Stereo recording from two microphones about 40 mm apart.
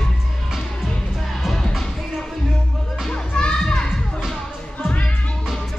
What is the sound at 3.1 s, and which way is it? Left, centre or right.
Music, left.